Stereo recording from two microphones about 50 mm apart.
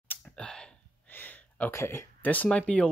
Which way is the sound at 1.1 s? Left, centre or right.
Left.